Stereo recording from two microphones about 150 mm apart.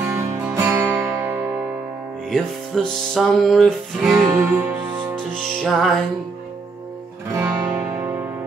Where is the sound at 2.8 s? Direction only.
Centre (ahead or behind).